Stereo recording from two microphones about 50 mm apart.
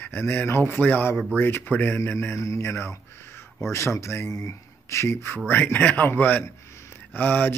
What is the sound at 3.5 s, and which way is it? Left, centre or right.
Speech, left.